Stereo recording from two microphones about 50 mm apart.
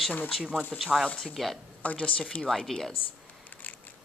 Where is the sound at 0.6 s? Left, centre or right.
Centre.